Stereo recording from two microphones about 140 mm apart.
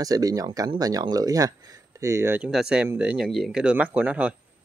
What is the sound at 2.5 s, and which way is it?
Speech, 5° right (ahead or behind).